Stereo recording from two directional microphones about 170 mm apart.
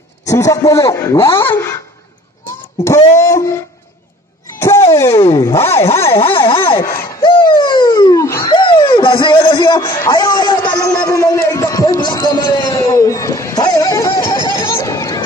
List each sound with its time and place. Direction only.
0.3 s a man's voice: 20° left (ahead or behind)
3.2 s a man's voice: 15° left (ahead or behind)
4.6 s a sound: 15° left (ahead or behind)
4.9 s a man's voice: 15° left (ahead or behind)
6.1 s vehicle: 30° left (ahead or behind)
6.8 s a sound: 15° left (ahead or behind)